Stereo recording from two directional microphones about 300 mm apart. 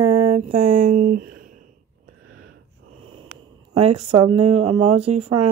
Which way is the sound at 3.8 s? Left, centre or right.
Centre.